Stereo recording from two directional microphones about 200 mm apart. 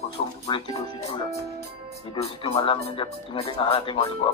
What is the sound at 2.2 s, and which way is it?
Speech, 30° left (ahead or behind).